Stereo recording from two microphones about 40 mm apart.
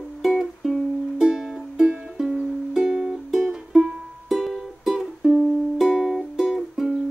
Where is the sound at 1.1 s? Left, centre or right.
Centre.